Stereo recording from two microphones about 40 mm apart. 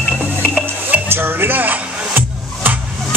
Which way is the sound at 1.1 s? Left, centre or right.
Right.